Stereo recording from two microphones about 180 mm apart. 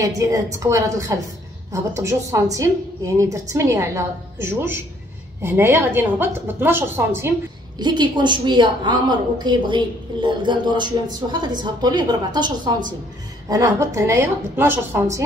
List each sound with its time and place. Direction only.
0.0 s a woman's voice: 20° right (ahead or behind)
7.8 s a woman's voice: 25° right (ahead or behind)